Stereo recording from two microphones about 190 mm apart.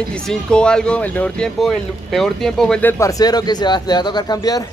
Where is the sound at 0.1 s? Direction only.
5° left (ahead or behind).